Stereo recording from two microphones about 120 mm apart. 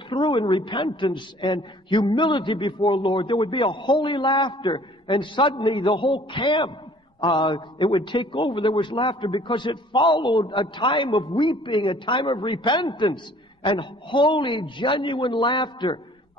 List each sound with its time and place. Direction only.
0.1 s a man's voice: 40° left (ahead or behind)